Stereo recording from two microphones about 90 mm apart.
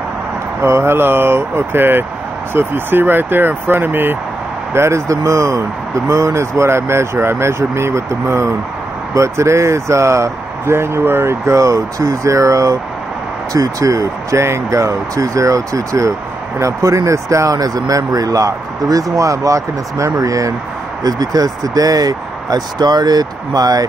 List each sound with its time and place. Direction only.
0.6 s speech: 30° right (ahead or behind)